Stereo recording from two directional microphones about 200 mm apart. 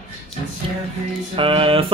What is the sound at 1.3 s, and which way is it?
Speech, 25° right (ahead or behind).